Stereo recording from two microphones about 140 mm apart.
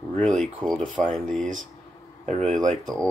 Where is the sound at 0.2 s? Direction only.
5° left (ahead or behind).